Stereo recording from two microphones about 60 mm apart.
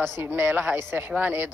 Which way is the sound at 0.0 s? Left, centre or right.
Right.